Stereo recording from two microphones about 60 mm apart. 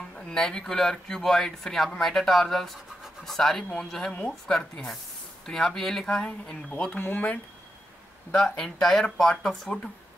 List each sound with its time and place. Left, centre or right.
0.3 s speech: centre
7.0 s speech: left
8.3 s speech: centre